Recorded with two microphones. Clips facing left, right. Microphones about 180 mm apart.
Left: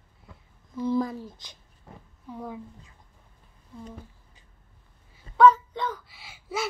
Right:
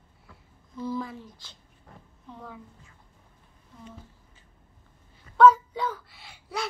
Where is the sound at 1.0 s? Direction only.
40° left (ahead or behind).